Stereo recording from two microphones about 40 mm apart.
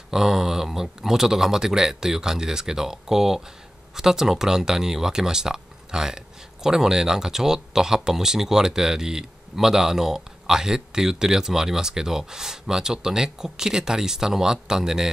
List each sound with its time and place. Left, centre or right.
0.1 s speech: centre